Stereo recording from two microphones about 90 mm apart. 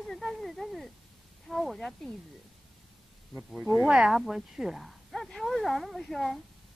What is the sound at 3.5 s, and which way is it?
Speech, centre (ahead or behind).